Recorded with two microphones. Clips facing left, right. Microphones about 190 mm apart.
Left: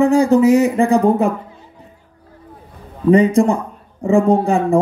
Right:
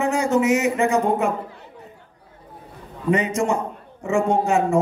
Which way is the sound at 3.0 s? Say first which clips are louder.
Left 9 dB; 35° left (ahead or behind).